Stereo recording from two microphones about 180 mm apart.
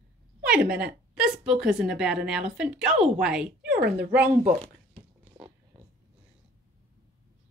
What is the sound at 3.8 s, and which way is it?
Speech, 60° right (ahead or behind).